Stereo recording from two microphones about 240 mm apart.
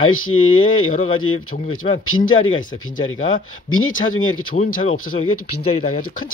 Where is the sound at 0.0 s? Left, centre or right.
Left.